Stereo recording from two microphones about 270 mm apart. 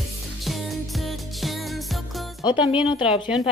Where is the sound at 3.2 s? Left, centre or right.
Centre.